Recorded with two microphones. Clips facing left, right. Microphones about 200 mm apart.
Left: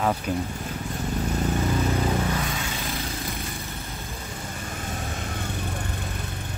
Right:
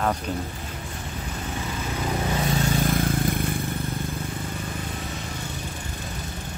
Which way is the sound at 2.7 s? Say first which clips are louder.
Right 8 dB; 50° right (ahead or behind).